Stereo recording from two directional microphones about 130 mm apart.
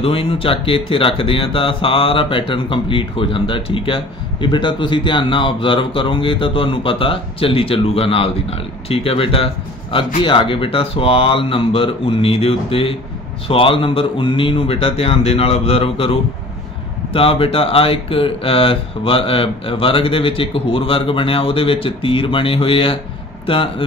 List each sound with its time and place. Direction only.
0.0 s a man's voice: 45° left (ahead or behind)